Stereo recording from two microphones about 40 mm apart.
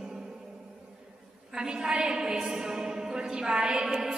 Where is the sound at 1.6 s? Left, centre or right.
Centre.